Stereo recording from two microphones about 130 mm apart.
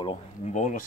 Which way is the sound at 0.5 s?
75° left (ahead or behind).